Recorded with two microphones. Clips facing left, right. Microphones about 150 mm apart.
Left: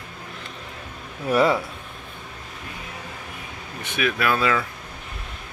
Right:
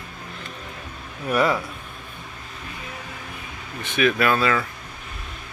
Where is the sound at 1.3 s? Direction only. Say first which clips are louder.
Left 2 dB; 25° left (ahead or behind).